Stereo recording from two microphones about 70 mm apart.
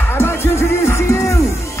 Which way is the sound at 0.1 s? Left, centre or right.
Left.